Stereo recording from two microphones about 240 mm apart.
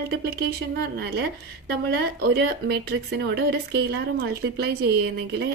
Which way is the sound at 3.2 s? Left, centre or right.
Right.